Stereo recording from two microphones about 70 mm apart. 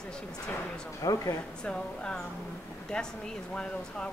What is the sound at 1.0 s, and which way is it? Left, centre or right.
Speech, left.